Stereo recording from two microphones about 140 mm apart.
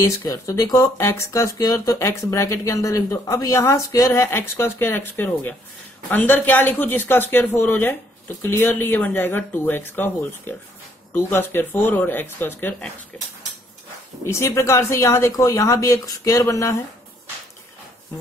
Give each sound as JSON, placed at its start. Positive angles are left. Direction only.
{"t": 0.0, "sound": "speech", "side_deg": 25}
{"t": 14.2, "sound": "speech", "side_deg": 20}